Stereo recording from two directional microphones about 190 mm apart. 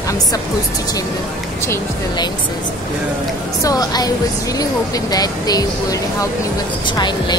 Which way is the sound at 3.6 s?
20° left (ahead or behind).